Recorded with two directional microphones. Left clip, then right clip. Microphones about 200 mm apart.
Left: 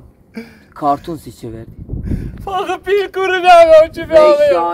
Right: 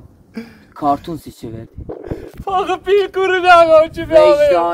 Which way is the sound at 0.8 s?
Centre (ahead or behind).